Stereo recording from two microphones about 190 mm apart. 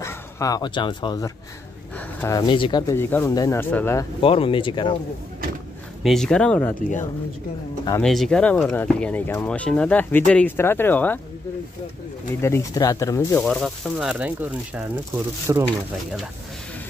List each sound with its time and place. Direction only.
0.0 s speech: 20° left (ahead or behind)
2.0 s a sound: 10° left (ahead or behind)
2.3 s speech: 25° left (ahead or behind)
2.9 s speech: 10° left (ahead or behind)
4.2 s speech: 30° left (ahead or behind)
6.0 s speech: 5° left (ahead or behind)
8.0 s speech: centre (ahead or behind)
12.4 s speech: 15° left (ahead or behind)
13.4 s speech: centre (ahead or behind); by 15.6 s 15° right (ahead or behind)